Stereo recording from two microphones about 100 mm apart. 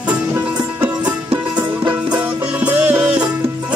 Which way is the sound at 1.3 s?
20° right (ahead or behind).